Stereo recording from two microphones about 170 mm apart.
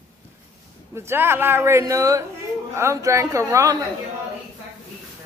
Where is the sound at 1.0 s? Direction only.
15° right (ahead or behind).